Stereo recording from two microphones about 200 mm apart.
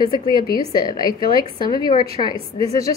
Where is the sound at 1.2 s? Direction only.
20° left (ahead or behind).